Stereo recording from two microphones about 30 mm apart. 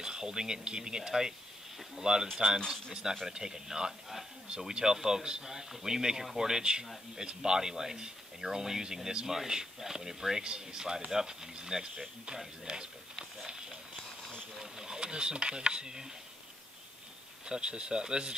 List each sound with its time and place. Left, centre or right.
0.0 s speech: right
10.4 s speech: right
14.6 s a sound: centre
15.0 s speech: right
17.5 s speech: right